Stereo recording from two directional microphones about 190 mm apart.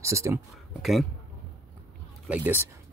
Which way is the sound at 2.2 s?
5° right (ahead or behind).